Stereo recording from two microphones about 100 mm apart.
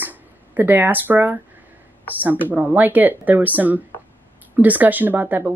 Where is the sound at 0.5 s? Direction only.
20° right (ahead or behind).